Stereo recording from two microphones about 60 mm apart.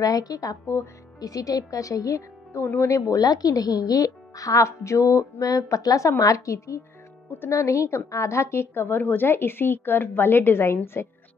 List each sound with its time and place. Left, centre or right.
0.0 s a woman's voice: left
2.6 s a woman's voice: left
2.9 s speech: left
7.2 s speech: left
7.5 s a woman's voice: left